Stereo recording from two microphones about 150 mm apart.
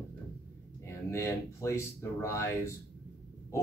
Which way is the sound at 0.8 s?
20° left (ahead or behind).